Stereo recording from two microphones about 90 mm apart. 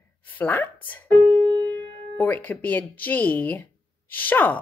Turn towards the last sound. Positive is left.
turn(degrees=20)  # may be behind; listen again after turning